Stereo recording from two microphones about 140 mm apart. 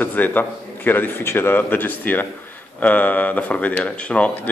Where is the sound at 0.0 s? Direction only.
10° left (ahead or behind).